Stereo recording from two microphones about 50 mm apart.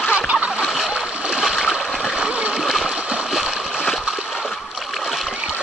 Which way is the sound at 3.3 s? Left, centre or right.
Centre.